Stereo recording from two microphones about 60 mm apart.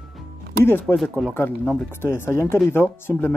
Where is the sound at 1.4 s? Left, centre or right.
Left.